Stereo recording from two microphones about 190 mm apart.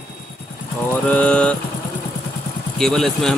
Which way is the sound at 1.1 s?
5° left (ahead or behind).